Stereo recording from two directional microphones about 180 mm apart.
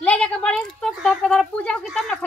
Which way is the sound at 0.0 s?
5° left (ahead or behind).